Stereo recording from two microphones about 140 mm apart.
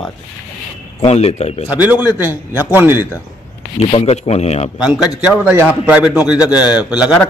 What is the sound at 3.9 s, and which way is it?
Speech, 45° left (ahead or behind).